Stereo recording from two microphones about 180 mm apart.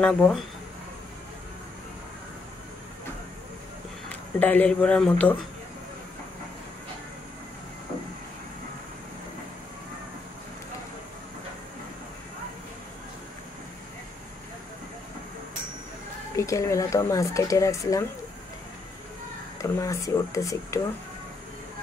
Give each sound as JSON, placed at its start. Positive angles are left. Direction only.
{"t": 0.0, "sound": "speech", "side_deg": 5}
{"t": 4.4, "sound": "speech", "side_deg": 10}
{"t": 16.3, "sound": "speech", "side_deg": 15}
{"t": 19.6, "sound": "speech", "side_deg": 15}